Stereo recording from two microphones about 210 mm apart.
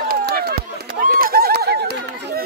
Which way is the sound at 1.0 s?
45° right (ahead or behind).